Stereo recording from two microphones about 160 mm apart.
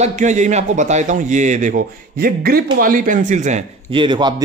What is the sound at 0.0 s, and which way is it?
A man's voice, 50° right (ahead or behind).